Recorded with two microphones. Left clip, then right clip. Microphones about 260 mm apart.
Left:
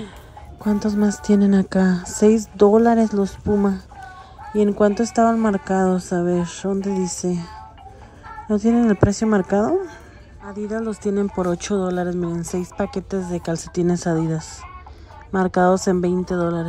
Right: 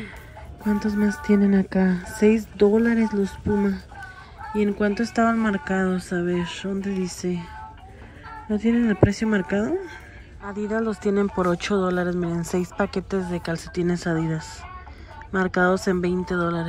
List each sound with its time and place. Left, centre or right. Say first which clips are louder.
0.7 s speech: left 3 dB; centre
1.4 s speech: left 3 dB; right
2.2 s speech: left 4 dB; centre
8.5 s speech: left 4 dB; right
9.1 s speech: left 5 dB; centre